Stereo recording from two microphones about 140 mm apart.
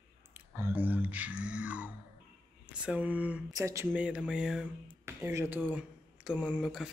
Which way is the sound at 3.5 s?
20° right (ahead or behind).